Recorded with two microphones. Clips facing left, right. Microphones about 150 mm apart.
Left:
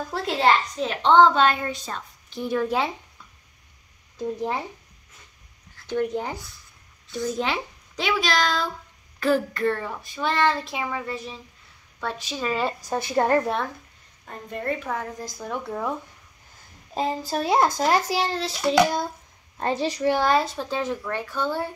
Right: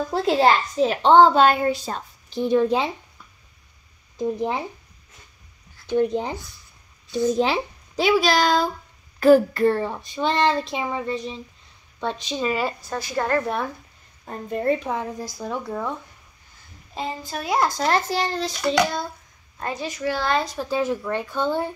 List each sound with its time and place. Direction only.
0.1 s a child's voice: 35° right (ahead or behind)
1.9 s a sound: 35° right (ahead or behind)
2.5 s speech: 20° right (ahead or behind)
4.2 s speech: 15° right (ahead or behind)
7.1 s speech: 25° right (ahead or behind)
7.4 s a child's voice: 35° right (ahead or behind); by 12.6 s 15° right (ahead or behind)
13.1 s a child's voice: 20° left (ahead or behind)
14.2 s speech: 30° right (ahead or behind)
15.3 s speech: 5° right (ahead or behind)
16.9 s a child's voice: 40° left (ahead or behind)
17.7 s a child's voice: 10° left (ahead or behind)
19.6 s a child's voice: 30° left (ahead or behind)
20.1 s a child's voice: 15° left (ahead or behind)
20.5 s speech: 10° right (ahead or behind)